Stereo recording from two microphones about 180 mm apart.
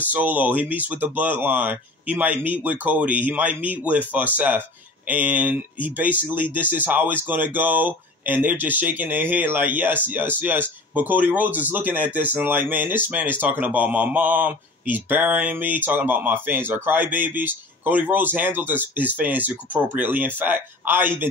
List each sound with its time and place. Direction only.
0.0 s speech: 10° right (ahead or behind)